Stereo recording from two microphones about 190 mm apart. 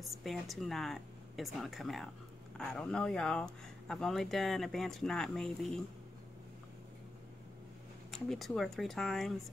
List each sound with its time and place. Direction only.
0.0 s speech: centre (ahead or behind)
8.1 s speech: centre (ahead or behind)